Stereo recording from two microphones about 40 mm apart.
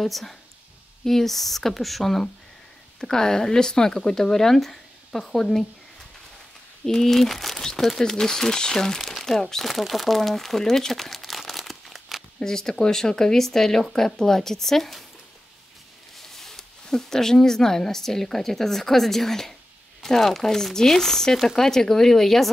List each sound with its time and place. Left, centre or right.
0.0 s speech: centre
3.0 s speech: centre
6.9 s speech: centre
9.0 s speech: centre
12.4 s speech: centre
16.2 s speech: centre